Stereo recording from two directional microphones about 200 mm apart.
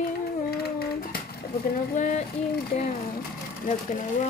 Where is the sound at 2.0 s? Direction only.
40° left (ahead or behind).